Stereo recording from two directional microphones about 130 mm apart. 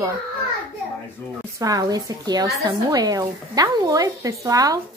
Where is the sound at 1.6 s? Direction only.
30° right (ahead or behind).